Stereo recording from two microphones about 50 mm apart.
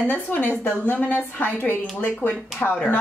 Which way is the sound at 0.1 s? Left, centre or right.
Left.